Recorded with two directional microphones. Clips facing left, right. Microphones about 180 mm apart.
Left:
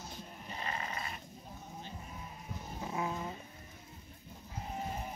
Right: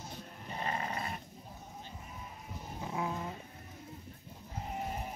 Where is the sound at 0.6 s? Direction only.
45° right (ahead or behind).